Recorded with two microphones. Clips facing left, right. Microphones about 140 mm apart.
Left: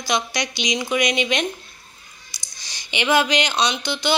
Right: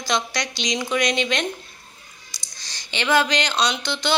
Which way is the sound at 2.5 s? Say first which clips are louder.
Left 2 dB; 15° left (ahead or behind).